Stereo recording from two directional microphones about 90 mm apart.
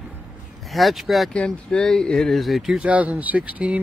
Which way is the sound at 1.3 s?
10° left (ahead or behind).